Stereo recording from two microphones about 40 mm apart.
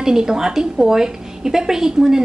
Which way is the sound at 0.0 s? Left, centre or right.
Centre.